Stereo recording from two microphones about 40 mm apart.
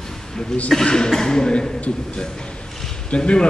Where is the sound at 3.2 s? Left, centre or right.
Left.